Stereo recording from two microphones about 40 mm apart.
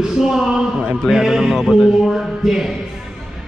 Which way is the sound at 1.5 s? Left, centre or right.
Centre.